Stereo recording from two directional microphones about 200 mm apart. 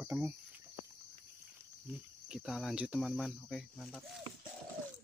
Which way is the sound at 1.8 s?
5° right (ahead or behind).